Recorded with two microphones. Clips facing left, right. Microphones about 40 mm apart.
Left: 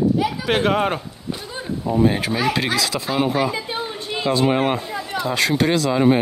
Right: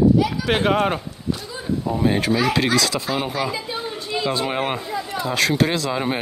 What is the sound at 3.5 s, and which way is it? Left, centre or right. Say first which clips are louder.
Chatter: left 1 dB; left.